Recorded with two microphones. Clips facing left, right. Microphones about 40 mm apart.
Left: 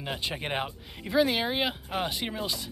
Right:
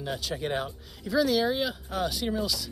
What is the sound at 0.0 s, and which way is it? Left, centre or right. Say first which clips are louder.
Speech: right 1 dB; left.